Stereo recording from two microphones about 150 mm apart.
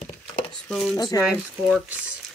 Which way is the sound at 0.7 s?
5° left (ahead or behind).